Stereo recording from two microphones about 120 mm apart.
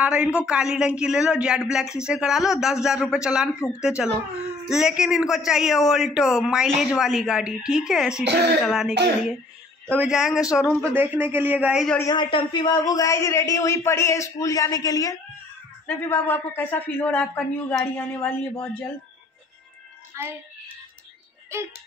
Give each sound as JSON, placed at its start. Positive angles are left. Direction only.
{"t": 0.0, "sound": "a man's voice", "side_deg": -10}
{"t": 10.8, "sound": "a man's voice", "side_deg": -15}
{"t": 11.7, "sound": "speech", "side_deg": 5}
{"t": 12.1, "sound": "a man's voice", "side_deg": 40}
{"t": 15.9, "sound": "a man's voice", "side_deg": 20}
{"t": 20.2, "sound": "a child's voice", "side_deg": -25}
{"t": 21.5, "sound": "speech", "side_deg": -25}